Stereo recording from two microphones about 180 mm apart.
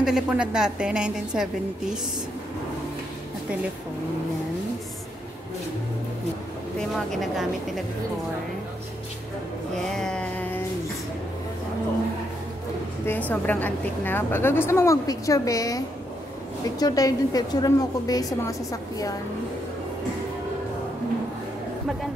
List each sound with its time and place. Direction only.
0.0 s a woman's voice: 5° right (ahead or behind)
7.1 s a woman's voice: centre (ahead or behind)
9.8 s a sound: 5° left (ahead or behind)
13.0 s a woman's voice: 10° left (ahead or behind)